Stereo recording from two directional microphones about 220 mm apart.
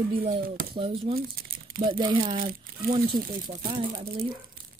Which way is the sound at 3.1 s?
40° right (ahead or behind).